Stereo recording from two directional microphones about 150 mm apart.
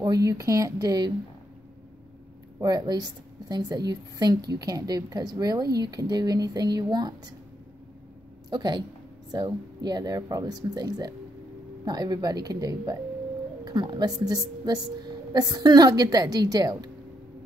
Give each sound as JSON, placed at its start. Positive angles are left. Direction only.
{"t": 0.0, "sound": "a woman's voice", "side_deg": -25}
{"t": 2.6, "sound": "a woman's voice", "side_deg": -25}
{"t": 8.5, "sound": "a woman's voice", "side_deg": -30}